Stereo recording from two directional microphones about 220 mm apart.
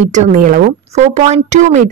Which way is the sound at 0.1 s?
35° right (ahead or behind).